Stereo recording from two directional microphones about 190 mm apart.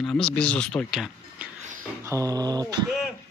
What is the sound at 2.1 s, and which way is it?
Dog, 15° right (ahead or behind).